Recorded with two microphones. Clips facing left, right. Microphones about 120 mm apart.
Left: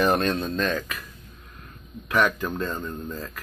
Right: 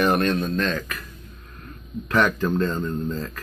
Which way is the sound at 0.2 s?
15° left (ahead or behind).